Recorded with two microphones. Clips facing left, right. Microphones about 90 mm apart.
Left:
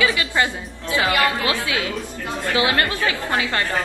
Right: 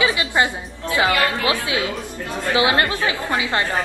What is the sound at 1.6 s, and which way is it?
A woman's voice, 25° right (ahead or behind).